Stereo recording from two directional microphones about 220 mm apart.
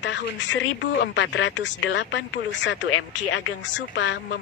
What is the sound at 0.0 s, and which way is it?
Speech, 55° left (ahead or behind).